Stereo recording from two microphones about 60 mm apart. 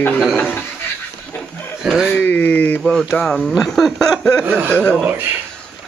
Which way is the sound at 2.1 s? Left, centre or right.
Left.